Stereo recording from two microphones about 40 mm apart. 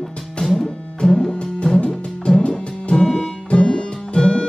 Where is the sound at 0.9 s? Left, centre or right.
Centre.